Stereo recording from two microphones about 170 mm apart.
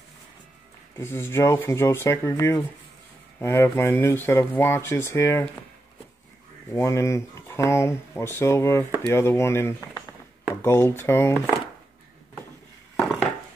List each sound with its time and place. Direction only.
0.9 s speech: 15° left (ahead or behind)
6.7 s speech: 15° left (ahead or behind)